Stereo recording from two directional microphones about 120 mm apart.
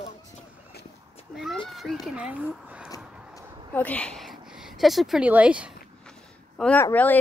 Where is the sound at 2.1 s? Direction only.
10° right (ahead or behind).